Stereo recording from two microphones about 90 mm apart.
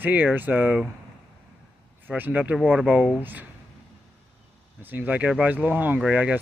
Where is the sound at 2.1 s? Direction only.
20° right (ahead or behind).